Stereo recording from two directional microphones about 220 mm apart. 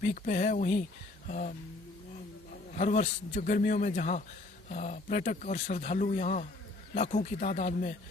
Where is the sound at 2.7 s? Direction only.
35° left (ahead or behind).